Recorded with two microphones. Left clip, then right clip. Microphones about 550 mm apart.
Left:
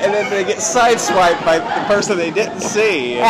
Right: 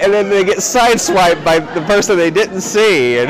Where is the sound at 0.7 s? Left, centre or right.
Right.